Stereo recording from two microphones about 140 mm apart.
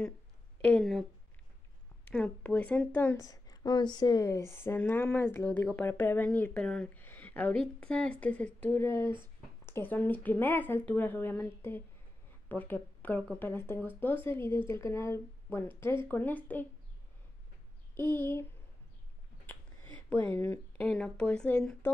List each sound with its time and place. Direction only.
0.6 s speech: 10° left (ahead or behind)
2.0 s a woman's voice: 10° left (ahead or behind)
17.9 s a woman's voice: 15° left (ahead or behind)